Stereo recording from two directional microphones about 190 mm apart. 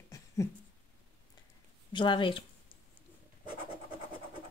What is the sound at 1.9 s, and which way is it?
Speech, 25° left (ahead or behind).